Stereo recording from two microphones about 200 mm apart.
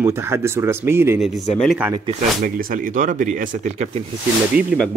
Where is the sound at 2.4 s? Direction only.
45° right (ahead or behind).